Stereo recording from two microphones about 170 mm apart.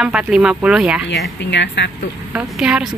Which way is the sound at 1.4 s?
90° left.